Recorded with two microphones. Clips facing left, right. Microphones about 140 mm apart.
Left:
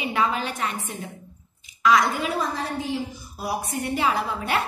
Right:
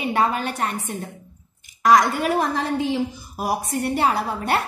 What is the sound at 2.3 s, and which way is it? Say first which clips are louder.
A woman's voice: right 5 dB; 65° right (ahead or behind).